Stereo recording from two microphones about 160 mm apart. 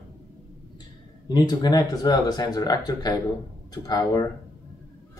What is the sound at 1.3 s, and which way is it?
Speech, 25° left (ahead or behind).